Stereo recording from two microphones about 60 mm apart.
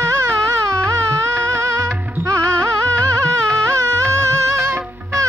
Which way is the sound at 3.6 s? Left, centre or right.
Right.